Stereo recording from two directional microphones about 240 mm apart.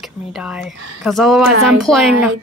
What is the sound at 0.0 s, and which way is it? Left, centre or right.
Speech, centre.